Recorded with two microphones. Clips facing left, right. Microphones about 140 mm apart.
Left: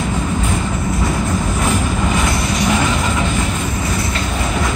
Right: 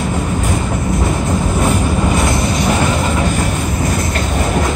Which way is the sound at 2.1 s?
35° right (ahead or behind).